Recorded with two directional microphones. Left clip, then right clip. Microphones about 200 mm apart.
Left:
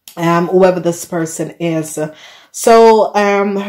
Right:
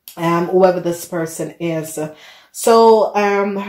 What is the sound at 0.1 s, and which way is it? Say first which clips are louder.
Speech: left 3 dB; 40° left (ahead or behind).